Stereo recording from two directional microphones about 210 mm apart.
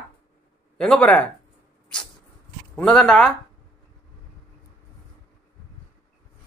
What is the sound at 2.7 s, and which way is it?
Speech, 5° left (ahead or behind).